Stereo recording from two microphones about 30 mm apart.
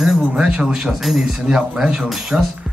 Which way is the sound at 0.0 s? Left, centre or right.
Centre.